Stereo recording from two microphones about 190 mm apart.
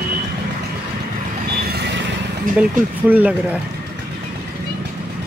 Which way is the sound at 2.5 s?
45° right (ahead or behind).